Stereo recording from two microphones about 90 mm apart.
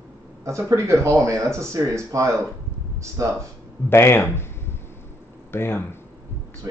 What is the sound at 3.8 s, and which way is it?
Speech, 25° left (ahead or behind).